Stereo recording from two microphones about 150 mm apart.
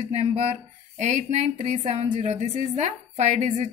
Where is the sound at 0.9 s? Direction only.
50° right (ahead or behind).